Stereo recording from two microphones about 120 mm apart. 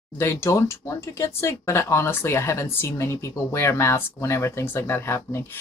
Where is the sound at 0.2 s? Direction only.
25° left (ahead or behind).